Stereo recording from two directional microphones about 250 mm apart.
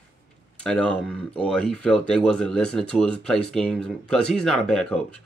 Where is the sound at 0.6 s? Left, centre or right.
Centre.